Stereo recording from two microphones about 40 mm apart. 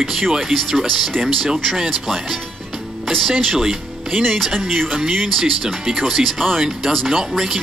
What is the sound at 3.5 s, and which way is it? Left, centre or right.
Speech, centre.